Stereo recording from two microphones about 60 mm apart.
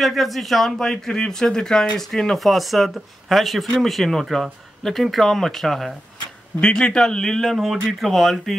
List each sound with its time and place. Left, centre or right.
0.0 s a man's voice: centre
7.5 s speech: centre